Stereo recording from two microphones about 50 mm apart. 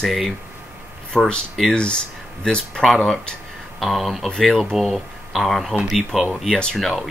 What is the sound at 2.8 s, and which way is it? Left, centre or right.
Speech, centre.